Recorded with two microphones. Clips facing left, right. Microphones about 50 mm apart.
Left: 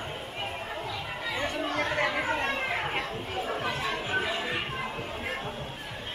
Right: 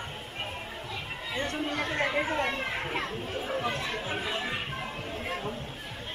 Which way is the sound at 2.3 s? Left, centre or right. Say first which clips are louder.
Left 1 dB; left.